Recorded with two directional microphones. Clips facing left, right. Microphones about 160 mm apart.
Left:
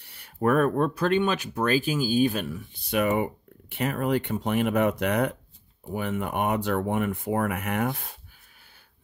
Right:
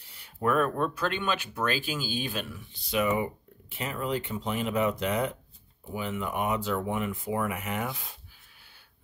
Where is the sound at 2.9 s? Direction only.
55° left (ahead or behind).